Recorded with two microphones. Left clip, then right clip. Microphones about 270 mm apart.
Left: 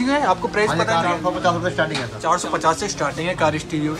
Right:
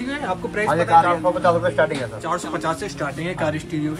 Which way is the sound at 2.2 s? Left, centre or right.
Centre.